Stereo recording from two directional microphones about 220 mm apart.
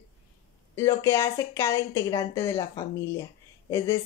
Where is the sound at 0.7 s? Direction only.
10° left (ahead or behind).